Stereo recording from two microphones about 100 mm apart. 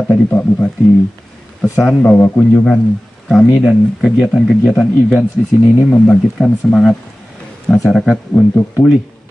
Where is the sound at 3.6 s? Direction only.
Centre (ahead or behind).